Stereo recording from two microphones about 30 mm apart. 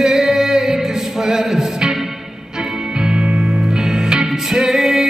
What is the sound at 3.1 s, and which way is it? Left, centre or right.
Music, right.